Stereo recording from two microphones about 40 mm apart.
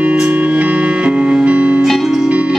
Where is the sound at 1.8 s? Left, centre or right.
Centre.